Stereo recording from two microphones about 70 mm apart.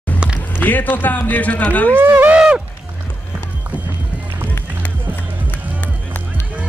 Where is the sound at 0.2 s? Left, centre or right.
Centre.